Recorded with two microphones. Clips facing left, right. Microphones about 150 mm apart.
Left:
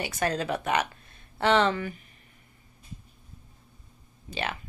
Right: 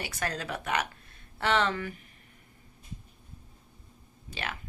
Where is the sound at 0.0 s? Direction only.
25° left (ahead or behind).